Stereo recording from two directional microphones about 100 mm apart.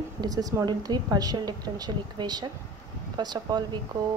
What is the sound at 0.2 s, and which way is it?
Speech, 40° right (ahead or behind).